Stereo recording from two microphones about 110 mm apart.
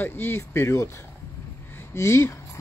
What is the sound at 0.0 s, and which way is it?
Speech, 20° left (ahead or behind).